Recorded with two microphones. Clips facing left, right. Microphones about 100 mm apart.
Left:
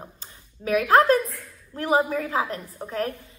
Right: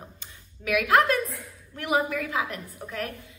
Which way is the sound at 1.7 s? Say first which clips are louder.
Left 4 dB; 35° left (ahead or behind).